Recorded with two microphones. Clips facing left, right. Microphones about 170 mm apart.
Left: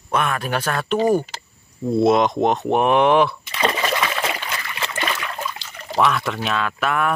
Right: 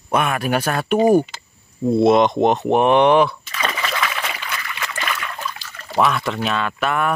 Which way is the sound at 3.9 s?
25° left (ahead or behind).